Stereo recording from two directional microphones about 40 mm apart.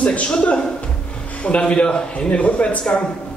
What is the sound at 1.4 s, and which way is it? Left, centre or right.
A man's voice, left.